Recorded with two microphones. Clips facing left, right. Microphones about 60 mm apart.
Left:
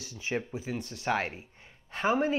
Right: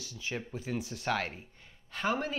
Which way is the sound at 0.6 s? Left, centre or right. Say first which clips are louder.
Even; centre.